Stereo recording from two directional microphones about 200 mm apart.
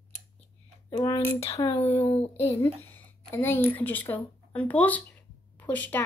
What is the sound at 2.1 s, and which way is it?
Speech, 30° left (ahead or behind).